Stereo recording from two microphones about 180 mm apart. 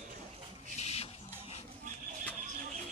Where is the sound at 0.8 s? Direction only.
35° left (ahead or behind).